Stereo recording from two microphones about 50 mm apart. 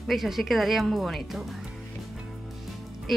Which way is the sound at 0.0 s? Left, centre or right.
Centre.